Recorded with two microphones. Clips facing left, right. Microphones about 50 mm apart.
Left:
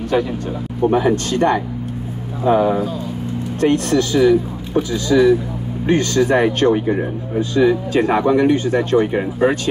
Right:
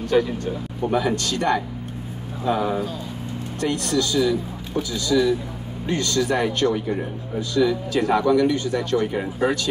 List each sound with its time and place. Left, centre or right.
0.1 s speech: centre
0.8 s speech: left